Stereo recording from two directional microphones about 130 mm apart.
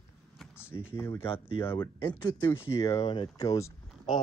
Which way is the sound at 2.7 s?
25° left (ahead or behind).